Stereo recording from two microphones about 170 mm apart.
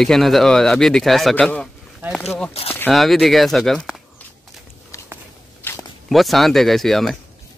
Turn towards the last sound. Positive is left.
turn(degrees=0)  # may be behind; listen again after turning